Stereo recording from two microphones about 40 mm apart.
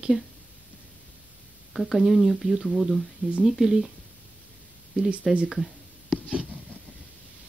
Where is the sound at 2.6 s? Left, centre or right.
Centre.